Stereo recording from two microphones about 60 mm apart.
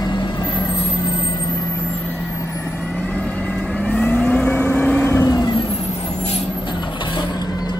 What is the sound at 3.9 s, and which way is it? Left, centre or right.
Vehicle, left.